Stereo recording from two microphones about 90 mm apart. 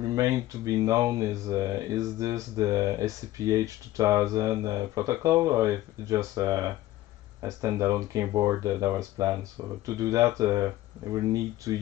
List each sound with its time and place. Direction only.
0.0 s speech: 40° right (ahead or behind)